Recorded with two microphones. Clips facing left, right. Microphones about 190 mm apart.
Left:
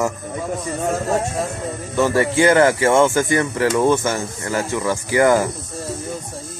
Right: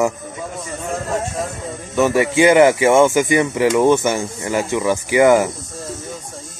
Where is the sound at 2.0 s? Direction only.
15° right (ahead or behind).